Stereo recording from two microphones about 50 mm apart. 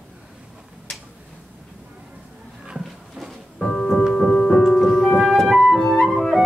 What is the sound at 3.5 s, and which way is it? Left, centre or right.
Piano, centre.